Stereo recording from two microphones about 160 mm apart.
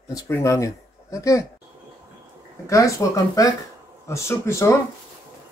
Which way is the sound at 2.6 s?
20° left (ahead or behind).